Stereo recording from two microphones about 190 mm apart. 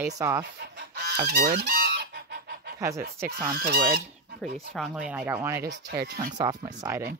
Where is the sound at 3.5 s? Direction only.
50° right (ahead or behind).